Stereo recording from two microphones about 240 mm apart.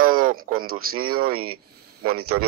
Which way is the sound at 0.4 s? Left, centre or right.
Right.